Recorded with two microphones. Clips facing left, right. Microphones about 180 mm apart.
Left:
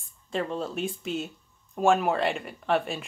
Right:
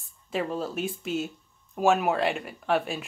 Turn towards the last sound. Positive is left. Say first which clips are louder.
# even
turn(degrees=0)  # may be behind; listen again after turning